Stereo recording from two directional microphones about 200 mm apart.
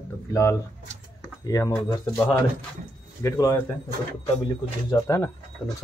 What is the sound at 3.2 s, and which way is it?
Speech, 15° left (ahead or behind).